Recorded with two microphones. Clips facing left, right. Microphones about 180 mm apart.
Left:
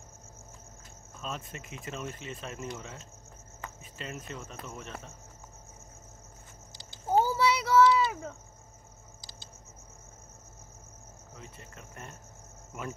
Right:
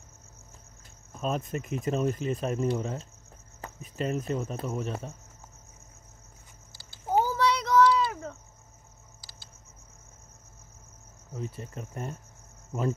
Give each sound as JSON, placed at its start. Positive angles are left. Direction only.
{"t": 1.5, "sound": "speech", "side_deg": -45}
{"t": 6.7, "sound": "babbling", "side_deg": 20}
{"t": 7.3, "sound": "child singing", "side_deg": 5}
{"t": 11.3, "sound": "speech", "side_deg": -40}